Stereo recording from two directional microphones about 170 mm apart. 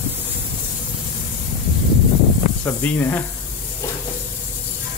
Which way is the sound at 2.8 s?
10° left (ahead or behind).